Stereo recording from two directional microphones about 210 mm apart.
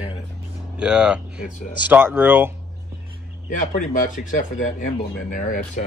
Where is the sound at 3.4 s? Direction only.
40° left (ahead or behind).